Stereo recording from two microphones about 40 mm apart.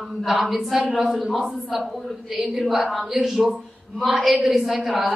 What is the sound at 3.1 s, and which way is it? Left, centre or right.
A woman's voice, centre.